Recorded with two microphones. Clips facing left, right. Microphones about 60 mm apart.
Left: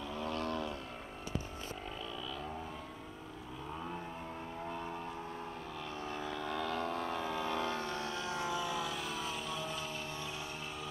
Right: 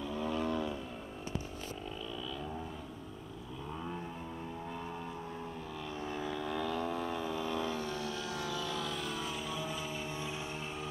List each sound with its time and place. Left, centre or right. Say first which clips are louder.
0.1 s vehicle: right 3 dB; centre
6.0 s vehicle: right 2 dB; centre
7.7 s vehicle: even; left; by 9.8 s centre